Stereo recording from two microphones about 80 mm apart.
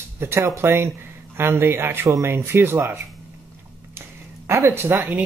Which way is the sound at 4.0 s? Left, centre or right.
Right.